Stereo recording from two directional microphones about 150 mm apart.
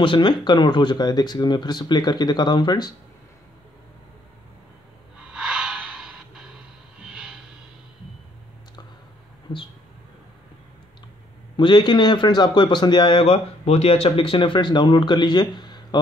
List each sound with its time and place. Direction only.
0.0 s speech: 35° left (ahead or behind)
5.2 s snort: 5° right (ahead or behind)
7.0 s vehicle: 5° right (ahead or behind)
11.5 s a man's voice: 30° left (ahead or behind)